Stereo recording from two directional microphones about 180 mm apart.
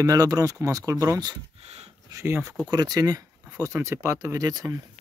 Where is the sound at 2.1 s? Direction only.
15° right (ahead or behind).